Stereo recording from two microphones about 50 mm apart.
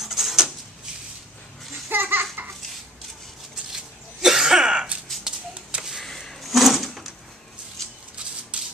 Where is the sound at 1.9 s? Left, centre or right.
Right.